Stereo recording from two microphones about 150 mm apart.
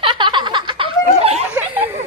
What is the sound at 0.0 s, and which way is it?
Chuckle, 35° right (ahead or behind).